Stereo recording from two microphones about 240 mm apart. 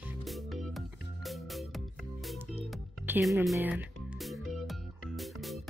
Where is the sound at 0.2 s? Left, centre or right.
Centre.